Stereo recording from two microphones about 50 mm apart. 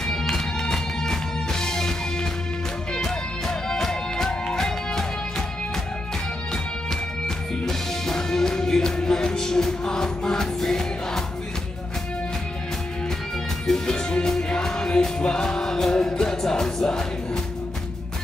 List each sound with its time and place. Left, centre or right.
0.0 s music: centre
6.5 s music: centre
13.7 s music: centre